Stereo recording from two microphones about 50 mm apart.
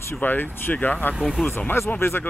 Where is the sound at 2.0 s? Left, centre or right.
Left.